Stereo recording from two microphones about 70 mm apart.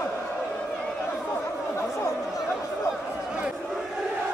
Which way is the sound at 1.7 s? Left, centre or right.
Left.